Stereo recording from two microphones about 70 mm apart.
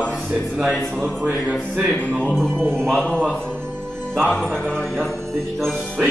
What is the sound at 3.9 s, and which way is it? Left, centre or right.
Music, centre.